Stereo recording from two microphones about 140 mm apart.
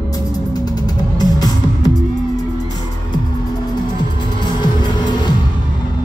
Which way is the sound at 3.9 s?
30° left (ahead or behind).